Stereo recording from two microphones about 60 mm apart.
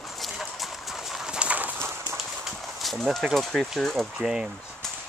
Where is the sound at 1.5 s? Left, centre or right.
Right.